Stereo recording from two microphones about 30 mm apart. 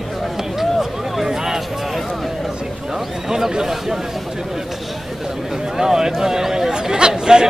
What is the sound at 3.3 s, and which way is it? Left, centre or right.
Speech, centre.